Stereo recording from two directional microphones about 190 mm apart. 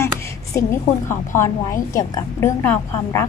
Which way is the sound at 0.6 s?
15° left (ahead or behind).